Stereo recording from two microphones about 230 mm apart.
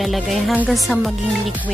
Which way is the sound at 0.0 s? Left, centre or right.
Centre.